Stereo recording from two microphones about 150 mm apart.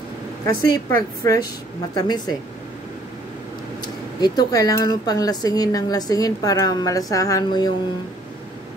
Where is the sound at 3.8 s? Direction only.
25° left (ahead or behind).